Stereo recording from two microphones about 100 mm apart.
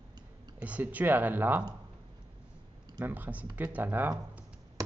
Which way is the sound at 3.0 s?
15° right (ahead or behind).